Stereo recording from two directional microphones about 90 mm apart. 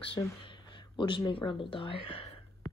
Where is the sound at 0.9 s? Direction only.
65° left (ahead or behind); by 2.0 s 80° left.